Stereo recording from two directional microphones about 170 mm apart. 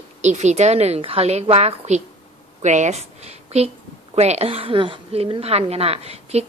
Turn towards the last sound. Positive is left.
turn(degrees=-40)  # may be behind; listen again after turning